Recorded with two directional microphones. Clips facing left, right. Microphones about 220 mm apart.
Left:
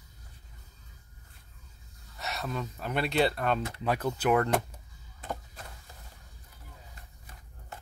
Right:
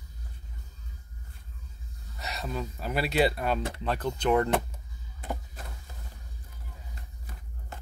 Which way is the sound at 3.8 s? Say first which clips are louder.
Left 1 dB; 10° left (ahead or behind).